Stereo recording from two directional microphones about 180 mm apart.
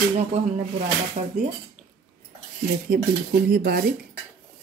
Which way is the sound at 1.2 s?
35° right (ahead or behind).